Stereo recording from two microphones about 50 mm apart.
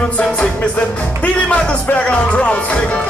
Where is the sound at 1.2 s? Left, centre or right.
Left.